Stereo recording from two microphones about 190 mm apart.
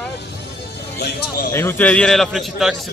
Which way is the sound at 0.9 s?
60° left (ahead or behind).